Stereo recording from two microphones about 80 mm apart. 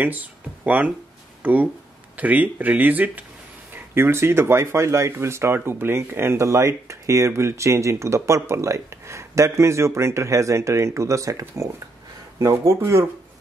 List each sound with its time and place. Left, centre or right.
0.0 s speech: centre; by 13.0 s right